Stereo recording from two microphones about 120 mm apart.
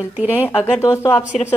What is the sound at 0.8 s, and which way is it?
Speech, 25° left (ahead or behind).